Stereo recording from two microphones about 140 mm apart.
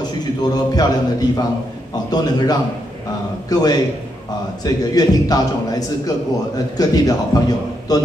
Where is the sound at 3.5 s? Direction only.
25° left (ahead or behind).